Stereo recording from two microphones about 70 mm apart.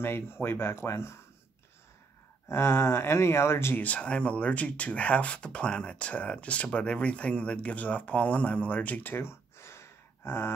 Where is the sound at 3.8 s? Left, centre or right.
Centre.